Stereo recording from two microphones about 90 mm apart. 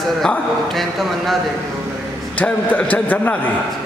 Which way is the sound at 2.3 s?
15° left (ahead or behind).